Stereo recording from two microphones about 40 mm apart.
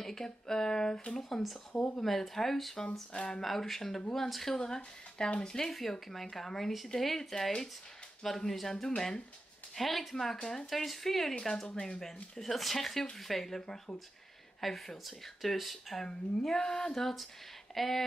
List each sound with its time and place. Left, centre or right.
0.0 s speech: centre
2.0 s speech: centre
2.7 s speech: centre
3.4 s speech: centre
5.7 s speech: centre
16.1 s speech: centre